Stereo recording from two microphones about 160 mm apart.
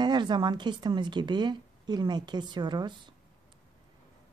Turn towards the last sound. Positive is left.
turn(degrees=-30)  # may be behind; listen again after turning